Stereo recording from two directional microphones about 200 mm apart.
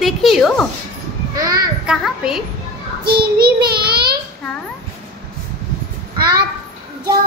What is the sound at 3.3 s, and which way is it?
Speech, 50° right (ahead or behind).